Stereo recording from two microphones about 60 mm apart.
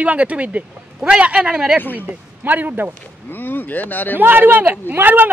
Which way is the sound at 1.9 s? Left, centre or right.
Right.